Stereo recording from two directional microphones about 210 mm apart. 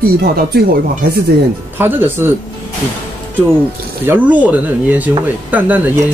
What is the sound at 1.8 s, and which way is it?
Speech, 10° right (ahead or behind).